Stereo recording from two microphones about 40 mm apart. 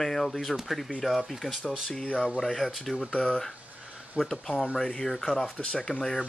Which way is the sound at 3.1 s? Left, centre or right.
Left.